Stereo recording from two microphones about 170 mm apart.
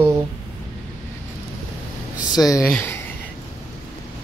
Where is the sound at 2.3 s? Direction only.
20° left (ahead or behind).